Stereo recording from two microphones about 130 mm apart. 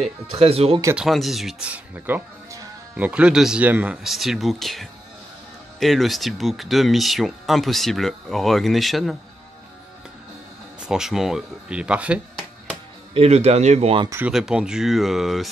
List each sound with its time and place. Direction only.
0.3 s speech: 50° right (ahead or behind)
0.9 s speech: centre (ahead or behind)
10.9 s speech: 5° right (ahead or behind)
13.1 s speech: 55° right (ahead or behind)
14.2 s speech: 5° right (ahead or behind)